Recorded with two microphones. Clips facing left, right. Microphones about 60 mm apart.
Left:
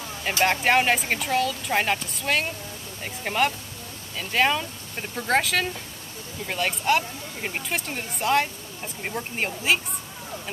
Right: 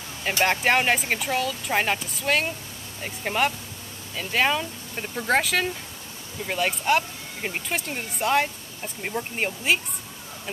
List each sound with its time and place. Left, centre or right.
0.2 s speech: centre